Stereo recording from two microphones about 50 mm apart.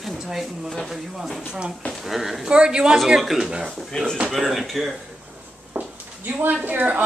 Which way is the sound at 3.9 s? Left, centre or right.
Centre.